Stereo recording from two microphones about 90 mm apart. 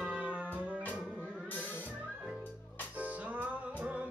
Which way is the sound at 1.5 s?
20° left (ahead or behind).